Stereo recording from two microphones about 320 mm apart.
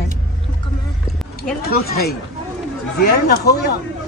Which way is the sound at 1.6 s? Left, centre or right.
Left.